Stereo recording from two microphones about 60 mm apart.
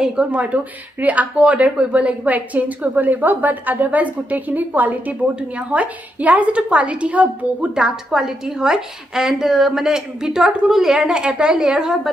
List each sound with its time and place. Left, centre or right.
0.0 s a woman's voice: centre